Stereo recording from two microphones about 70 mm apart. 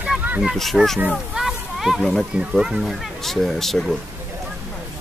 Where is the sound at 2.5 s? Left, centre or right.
Centre.